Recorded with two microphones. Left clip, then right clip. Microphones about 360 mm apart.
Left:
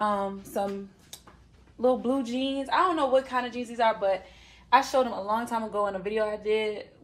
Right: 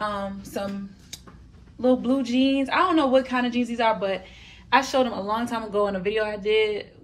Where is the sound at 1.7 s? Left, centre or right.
Centre.